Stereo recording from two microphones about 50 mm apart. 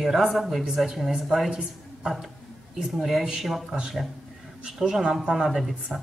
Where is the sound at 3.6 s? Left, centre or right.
Centre.